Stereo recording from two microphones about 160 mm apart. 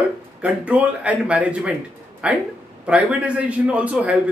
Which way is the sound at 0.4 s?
10° right (ahead or behind).